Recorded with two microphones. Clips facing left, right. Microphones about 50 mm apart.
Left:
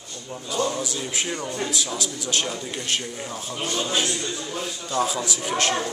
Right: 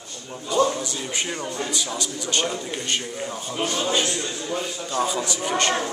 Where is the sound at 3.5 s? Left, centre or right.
Right.